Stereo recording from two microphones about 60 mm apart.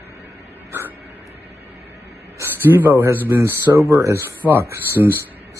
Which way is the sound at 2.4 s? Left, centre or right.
Right.